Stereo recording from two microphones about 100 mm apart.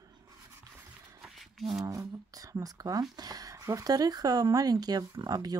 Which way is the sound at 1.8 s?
35° right (ahead or behind).